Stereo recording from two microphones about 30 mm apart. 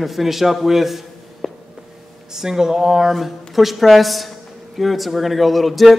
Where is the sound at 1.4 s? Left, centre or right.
Centre.